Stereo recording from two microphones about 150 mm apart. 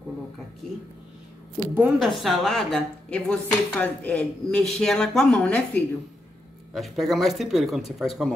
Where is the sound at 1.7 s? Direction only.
10° right (ahead or behind).